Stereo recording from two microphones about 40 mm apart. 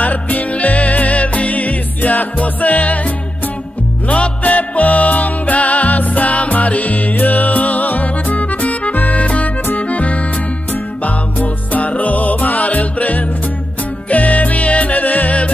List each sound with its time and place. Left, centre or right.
0.0 s music: left
4.4 s music: left